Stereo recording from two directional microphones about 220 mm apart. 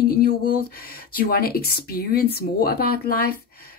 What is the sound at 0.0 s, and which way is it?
A woman's voice, 45° left (ahead or behind).